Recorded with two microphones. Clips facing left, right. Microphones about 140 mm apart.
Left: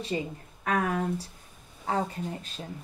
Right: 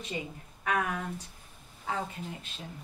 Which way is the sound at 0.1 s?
35° left (ahead or behind).